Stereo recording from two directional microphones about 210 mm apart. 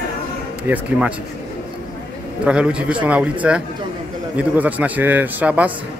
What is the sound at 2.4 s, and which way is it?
A man's voice, 5° right (ahead or behind).